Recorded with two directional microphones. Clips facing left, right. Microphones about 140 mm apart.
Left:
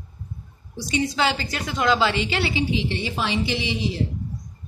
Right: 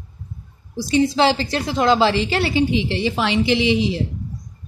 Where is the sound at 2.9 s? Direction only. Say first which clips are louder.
Right 5 dB; 90° right.